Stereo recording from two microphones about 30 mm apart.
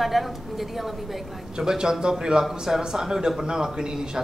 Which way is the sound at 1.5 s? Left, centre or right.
Right.